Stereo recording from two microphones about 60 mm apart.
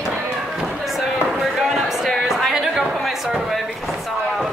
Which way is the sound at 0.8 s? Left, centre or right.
Centre.